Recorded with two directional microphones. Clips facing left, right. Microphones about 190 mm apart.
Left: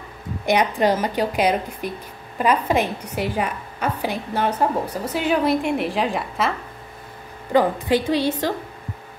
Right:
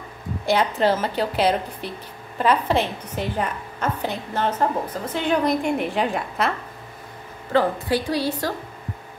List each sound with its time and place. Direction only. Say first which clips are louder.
0.5 s speech: left 1 dB; 15° left (ahead or behind)
7.5 s a woman's voice: left 2 dB; 20° left (ahead or behind)